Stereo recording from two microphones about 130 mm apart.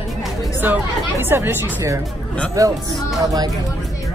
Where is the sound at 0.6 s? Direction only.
15° right (ahead or behind).